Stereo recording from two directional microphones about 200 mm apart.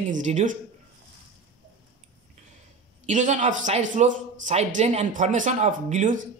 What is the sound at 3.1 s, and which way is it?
Speech, 40° right (ahead or behind).